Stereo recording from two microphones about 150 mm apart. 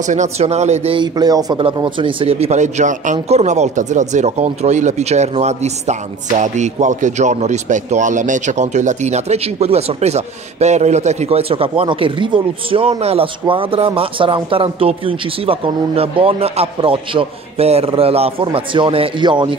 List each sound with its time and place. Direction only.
0.0 s speech: 55° right (ahead or behind)
0.9 s speech: 25° right (ahead or behind)